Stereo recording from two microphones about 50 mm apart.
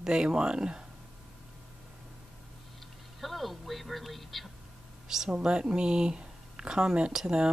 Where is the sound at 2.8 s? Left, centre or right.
Centre.